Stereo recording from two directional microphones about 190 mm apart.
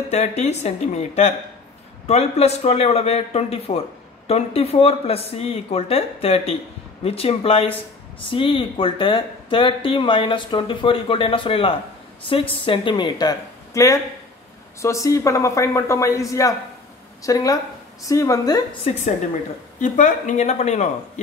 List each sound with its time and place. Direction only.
0.4 s a man's voice: 35° left (ahead or behind); by 18.6 s 20° left (ahead or behind)
19.8 s speech: 40° left (ahead or behind)